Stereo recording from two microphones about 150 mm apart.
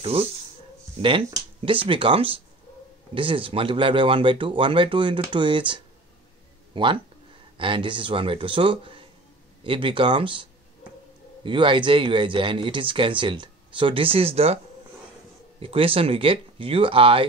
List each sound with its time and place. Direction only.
0.0 s speech: 40° right (ahead or behind)
15.6 s speech: 40° right (ahead or behind)